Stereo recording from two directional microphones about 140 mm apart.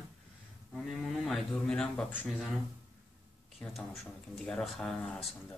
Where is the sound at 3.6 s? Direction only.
Centre (ahead or behind).